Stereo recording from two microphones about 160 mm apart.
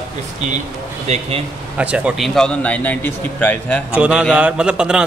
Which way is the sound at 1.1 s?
40° right (ahead or behind).